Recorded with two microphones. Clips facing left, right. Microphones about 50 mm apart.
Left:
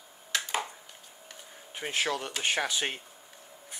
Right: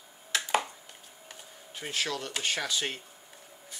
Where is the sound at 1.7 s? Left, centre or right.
Left.